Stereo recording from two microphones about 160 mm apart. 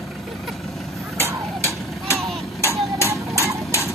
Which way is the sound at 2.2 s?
Centre (ahead or behind).